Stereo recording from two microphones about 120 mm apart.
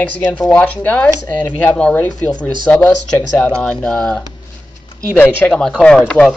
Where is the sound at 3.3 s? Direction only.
10° left (ahead or behind).